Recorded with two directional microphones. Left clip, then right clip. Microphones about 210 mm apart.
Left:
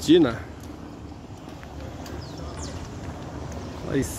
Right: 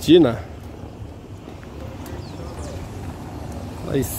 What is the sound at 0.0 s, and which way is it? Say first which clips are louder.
Speech: right 4 dB; 20° right (ahead or behind).